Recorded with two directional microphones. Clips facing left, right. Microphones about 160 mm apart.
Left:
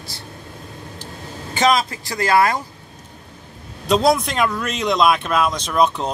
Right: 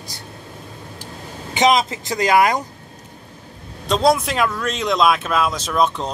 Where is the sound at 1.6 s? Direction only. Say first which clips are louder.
Right 1 dB; 20° right (ahead or behind).